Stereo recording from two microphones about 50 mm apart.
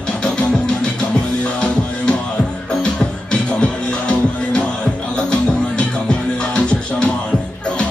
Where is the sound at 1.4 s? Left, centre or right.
Left.